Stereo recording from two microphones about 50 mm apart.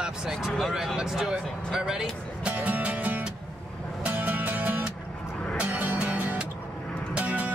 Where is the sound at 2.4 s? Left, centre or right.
Right.